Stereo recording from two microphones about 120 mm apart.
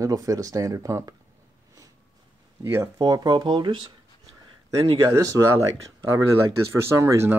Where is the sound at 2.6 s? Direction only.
25° right (ahead or behind); by 3.9 s 40° right (ahead or behind).